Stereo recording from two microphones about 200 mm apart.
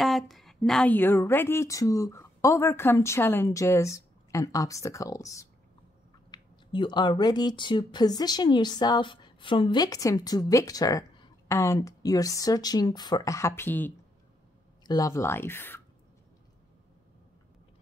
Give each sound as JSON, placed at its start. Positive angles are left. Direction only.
{"t": 0.0, "sound": "a woman's voice", "side_deg": 0}